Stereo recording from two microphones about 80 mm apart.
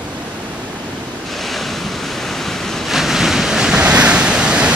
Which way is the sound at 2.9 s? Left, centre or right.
Centre.